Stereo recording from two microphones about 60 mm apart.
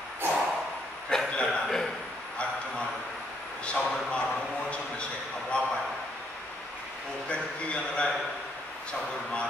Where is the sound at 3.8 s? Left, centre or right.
Centre.